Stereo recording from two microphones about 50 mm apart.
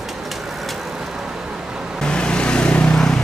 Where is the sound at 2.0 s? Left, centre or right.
Centre.